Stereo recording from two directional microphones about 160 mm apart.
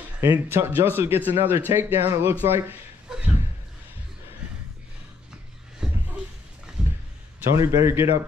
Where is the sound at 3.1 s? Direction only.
5° right (ahead or behind).